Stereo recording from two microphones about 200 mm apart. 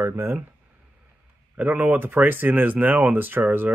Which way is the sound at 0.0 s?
10° right (ahead or behind).